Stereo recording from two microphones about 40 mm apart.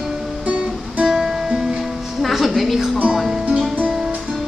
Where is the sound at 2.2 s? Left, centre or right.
Centre.